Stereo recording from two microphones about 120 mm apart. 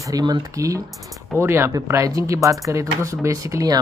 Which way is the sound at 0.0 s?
35° right (ahead or behind).